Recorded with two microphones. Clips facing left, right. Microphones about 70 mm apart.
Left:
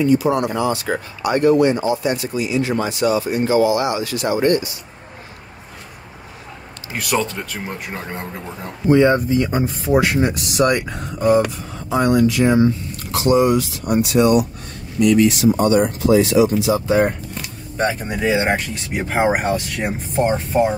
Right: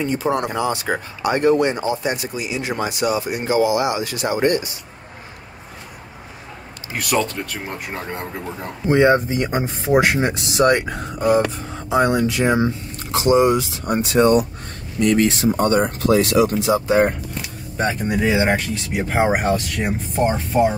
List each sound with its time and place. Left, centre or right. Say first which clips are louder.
0.0 s speech: left 4 dB; right
7.0 s speech: even; centre
8.8 s speech: left 1 dB; right
10.9 s speech: left 2 dB; centre
11.9 s speech: left 2 dB; right
16.1 s speech: left 2 dB; right
17.7 s speech: even; centre